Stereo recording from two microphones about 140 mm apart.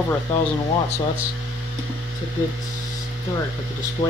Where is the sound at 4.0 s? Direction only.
55° left (ahead or behind).